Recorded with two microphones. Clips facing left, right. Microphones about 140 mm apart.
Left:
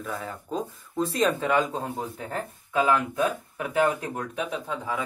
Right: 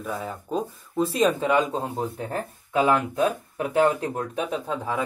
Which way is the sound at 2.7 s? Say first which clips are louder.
Right 2 dB; 30° right (ahead or behind).